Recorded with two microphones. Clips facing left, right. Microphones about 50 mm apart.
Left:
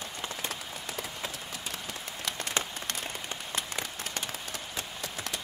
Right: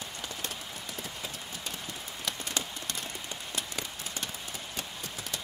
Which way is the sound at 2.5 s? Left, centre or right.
Left.